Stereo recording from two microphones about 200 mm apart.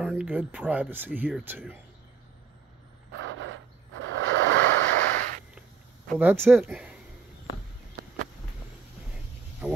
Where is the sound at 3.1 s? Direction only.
75° right (ahead or behind).